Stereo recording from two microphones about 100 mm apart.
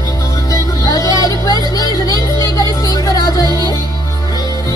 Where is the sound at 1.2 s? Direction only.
35° left (ahead or behind).